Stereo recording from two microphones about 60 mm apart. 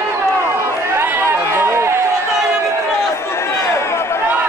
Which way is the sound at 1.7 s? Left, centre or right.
Right.